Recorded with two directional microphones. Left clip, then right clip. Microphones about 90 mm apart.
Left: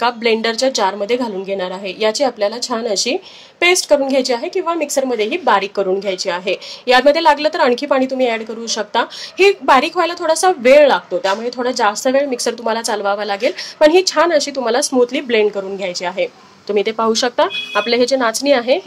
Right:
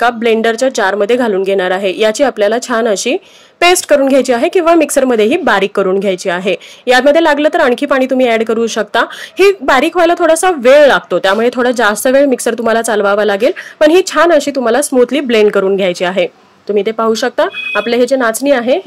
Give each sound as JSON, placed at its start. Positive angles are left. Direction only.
{"t": 0.0, "sound": "a woman's voice", "side_deg": -35}
{"t": 5.0, "sound": "a woman's voice", "side_deg": -40}
{"t": 9.0, "sound": "a woman's voice", "side_deg": -35}
{"t": 11.1, "sound": "a woman's voice", "side_deg": -55}
{"t": 15.8, "sound": "speech", "side_deg": -45}
{"t": 16.6, "sound": "speech", "side_deg": -25}